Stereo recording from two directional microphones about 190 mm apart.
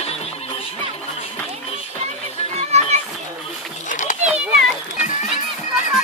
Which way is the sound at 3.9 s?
40° left (ahead or behind).